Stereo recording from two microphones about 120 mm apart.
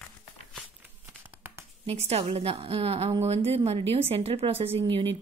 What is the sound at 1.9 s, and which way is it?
A woman's voice, 60° right (ahead or behind).